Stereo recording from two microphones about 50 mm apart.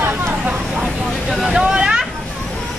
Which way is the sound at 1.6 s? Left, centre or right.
Centre.